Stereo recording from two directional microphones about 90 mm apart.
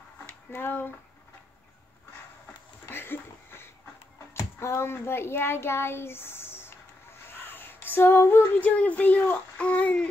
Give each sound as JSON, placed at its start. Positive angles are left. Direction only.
{"t": 0.5, "sound": "speech", "side_deg": 25}
{"t": 2.9, "sound": "a sound", "side_deg": 25}
{"t": 4.3, "sound": "a child's voice", "side_deg": 30}
{"t": 7.3, "sound": "female singing", "side_deg": 25}